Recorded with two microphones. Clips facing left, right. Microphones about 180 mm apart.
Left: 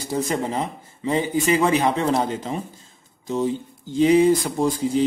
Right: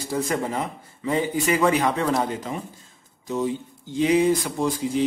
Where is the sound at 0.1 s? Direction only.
20° left (ahead or behind).